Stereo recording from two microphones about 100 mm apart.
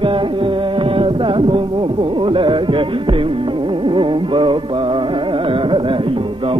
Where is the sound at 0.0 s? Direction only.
60° right (ahead or behind).